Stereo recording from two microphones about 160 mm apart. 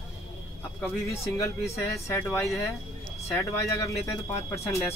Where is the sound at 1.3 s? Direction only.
20° left (ahead or behind).